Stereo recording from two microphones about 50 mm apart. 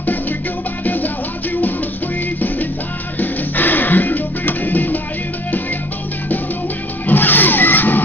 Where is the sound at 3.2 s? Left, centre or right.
Left.